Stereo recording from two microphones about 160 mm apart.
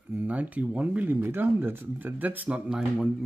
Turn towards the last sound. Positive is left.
turn(degrees=-5)  # may be behind; listen again after turning